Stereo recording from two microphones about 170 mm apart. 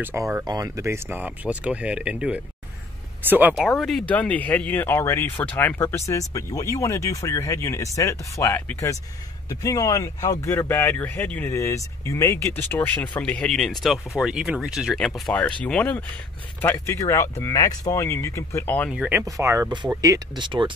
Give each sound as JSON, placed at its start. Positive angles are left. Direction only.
{"t": 0.0, "sound": "speech", "side_deg": -15}
{"t": 3.6, "sound": "speech", "side_deg": 0}
{"t": 18.9, "sound": "speech", "side_deg": -10}
{"t": 19.2, "sound": "speech", "side_deg": -20}